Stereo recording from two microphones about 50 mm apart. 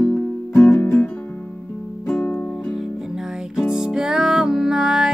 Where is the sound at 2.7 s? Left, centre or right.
Centre.